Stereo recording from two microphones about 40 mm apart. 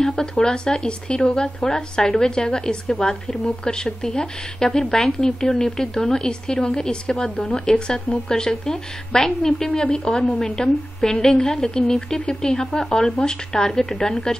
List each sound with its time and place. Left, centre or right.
0.0 s a woman's voice: centre